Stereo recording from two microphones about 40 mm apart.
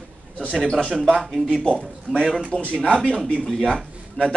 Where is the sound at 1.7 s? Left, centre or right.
Left.